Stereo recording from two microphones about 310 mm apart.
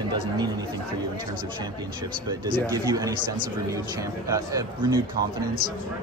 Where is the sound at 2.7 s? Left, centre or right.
Centre.